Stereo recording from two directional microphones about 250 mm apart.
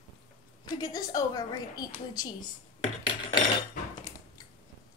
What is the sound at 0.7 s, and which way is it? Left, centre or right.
A woman's voice, centre.